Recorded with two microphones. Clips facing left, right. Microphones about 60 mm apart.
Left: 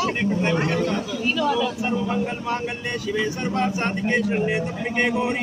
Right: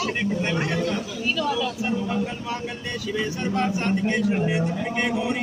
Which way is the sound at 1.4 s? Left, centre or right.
Left.